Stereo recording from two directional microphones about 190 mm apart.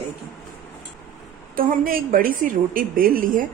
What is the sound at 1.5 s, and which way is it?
A woman's voice, 50° right (ahead or behind).